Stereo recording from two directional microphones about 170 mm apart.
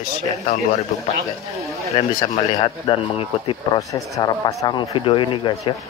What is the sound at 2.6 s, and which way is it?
Speech, 30° left (ahead or behind).